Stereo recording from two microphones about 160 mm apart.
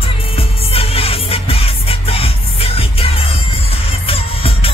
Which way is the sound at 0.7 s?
35° left (ahead or behind).